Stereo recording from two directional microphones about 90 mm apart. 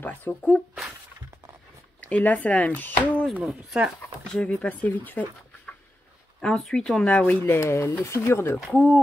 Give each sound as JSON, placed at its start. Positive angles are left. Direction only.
{"t": 0.0, "sound": "speech", "side_deg": 20}
{"t": 2.0, "sound": "speech", "side_deg": 15}
{"t": 3.4, "sound": "speech", "side_deg": -5}
{"t": 4.4, "sound": "speech", "side_deg": 15}
{"t": 6.4, "sound": "speech", "side_deg": 5}
{"t": 7.5, "sound": "speech", "side_deg": 30}